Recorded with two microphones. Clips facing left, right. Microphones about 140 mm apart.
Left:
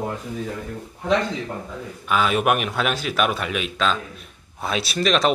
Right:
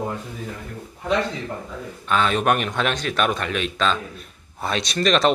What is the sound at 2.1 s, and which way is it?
A man's voice, 5° left (ahead or behind).